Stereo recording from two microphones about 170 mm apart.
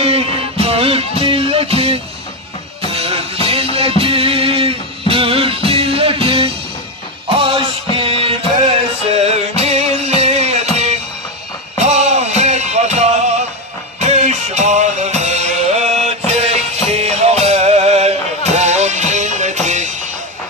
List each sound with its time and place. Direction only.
0.0 s music: 35° right (ahead or behind)